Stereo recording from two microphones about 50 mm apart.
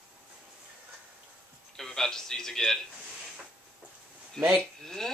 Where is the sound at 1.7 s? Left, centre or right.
Centre.